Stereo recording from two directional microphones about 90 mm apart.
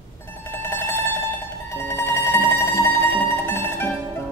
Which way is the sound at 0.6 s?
25° left (ahead or behind).